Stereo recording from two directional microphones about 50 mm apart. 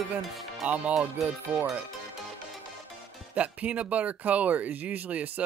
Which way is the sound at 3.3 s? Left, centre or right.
Right.